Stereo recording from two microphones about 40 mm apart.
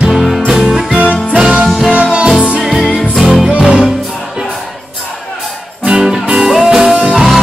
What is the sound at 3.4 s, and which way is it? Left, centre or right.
Music, right.